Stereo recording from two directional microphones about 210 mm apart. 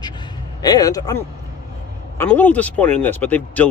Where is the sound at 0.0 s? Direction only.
20° left (ahead or behind).